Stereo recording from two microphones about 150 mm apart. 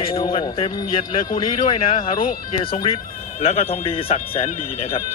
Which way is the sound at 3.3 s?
40° left (ahead or behind).